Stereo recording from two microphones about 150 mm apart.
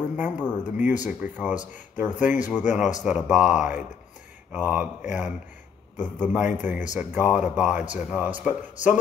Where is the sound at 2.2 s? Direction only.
10° right (ahead or behind).